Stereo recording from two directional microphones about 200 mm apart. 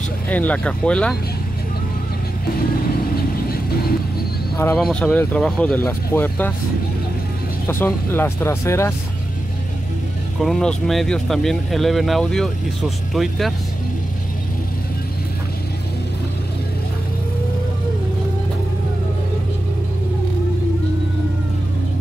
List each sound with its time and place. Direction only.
0.3 s speech: 5° left (ahead or behind)
3.2 s vehicle: 50° left (ahead or behind)
4.7 s speech: 5° left (ahead or behind)
7.6 s speech: 10° left (ahead or behind)
10.4 s speech: 5° left (ahead or behind)